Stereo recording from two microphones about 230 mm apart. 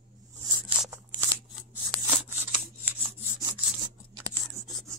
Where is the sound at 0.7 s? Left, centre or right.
Centre.